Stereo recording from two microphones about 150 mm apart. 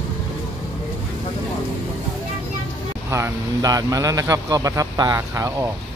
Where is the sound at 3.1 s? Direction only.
20° right (ahead or behind).